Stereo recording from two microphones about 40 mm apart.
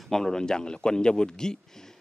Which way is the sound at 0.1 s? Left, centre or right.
Centre.